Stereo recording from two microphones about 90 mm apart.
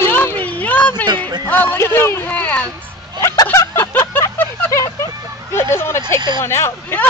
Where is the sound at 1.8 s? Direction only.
30° left (ahead or behind).